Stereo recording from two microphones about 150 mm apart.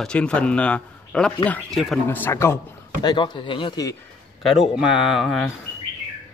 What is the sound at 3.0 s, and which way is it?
Speech, 30° left (ahead or behind).